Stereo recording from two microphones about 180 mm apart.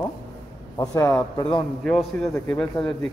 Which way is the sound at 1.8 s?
5° left (ahead or behind).